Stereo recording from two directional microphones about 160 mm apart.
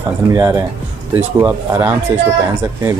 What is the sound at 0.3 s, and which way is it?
Speech, 20° right (ahead or behind).